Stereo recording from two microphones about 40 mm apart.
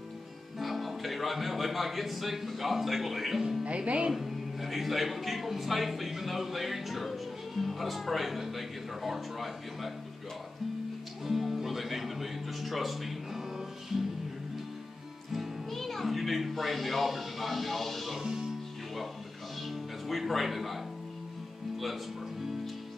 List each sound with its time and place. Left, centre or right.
0.6 s speech: centre
3.6 s speech: right
4.1 s speech: centre
11.2 s music: centre
15.3 s music: centre
15.8 s speech: centre
19.6 s music: centre
21.7 s speech: centre